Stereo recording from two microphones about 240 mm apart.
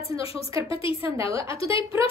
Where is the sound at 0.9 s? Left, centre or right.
Centre.